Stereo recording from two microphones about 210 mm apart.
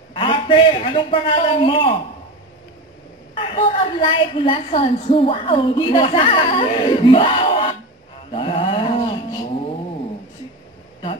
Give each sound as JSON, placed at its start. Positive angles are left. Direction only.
{"t": 0.1, "sound": "a man's voice", "side_deg": 25}
{"t": 3.3, "sound": "a woman's voice", "side_deg": 25}
{"t": 8.3, "sound": "a sound", "side_deg": 25}